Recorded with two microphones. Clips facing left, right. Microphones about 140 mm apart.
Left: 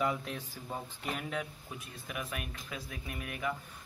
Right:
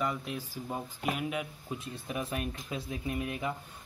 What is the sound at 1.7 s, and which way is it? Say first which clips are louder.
Speech: right 6 dB; 30° right (ahead or behind).